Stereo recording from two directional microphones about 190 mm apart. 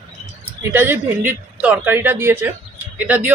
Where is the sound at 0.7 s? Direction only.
10° right (ahead or behind).